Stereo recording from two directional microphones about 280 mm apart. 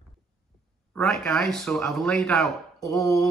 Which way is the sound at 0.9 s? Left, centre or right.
Centre.